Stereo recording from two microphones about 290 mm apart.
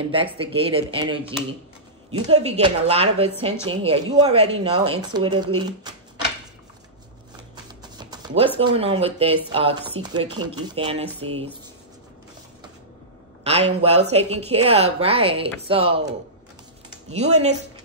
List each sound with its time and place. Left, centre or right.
0.1 s a woman's voice: centre
2.1 s a man's voice: right
2.4 s a woman's voice: right
8.0 s music: centre
8.4 s a woman's voice: centre
13.4 s a woman's voice: right
17.1 s speech: right